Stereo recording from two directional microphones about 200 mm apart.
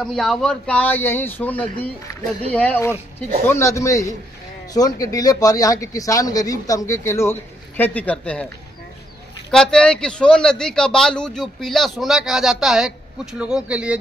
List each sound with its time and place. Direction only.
0.0 s a man's voice: centre (ahead or behind)
9.5 s a man's voice: 5° left (ahead or behind)